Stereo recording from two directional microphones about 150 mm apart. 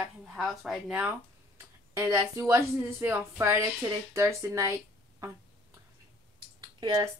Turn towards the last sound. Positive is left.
turn(degrees=-30)  # may be behind; listen again after turning